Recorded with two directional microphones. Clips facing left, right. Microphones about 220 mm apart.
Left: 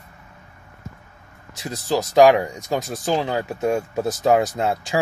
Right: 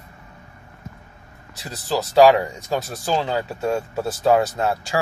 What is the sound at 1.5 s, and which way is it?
Speech, 15° left (ahead or behind).